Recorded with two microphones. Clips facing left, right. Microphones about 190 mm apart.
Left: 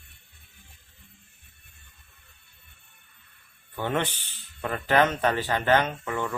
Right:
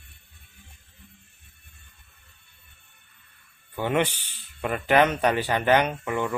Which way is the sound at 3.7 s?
15° right (ahead or behind).